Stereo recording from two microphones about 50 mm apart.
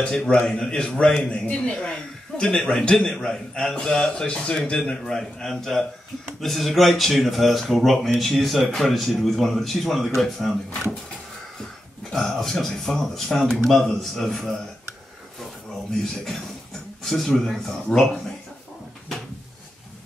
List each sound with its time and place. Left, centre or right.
0.0 s a man's voice: centre
2.4 s a man's voice: centre
12.1 s a man's voice: centre
17.0 s a man's voice: centre